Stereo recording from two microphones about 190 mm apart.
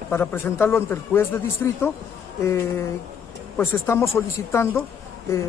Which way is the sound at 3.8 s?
10° left (ahead or behind).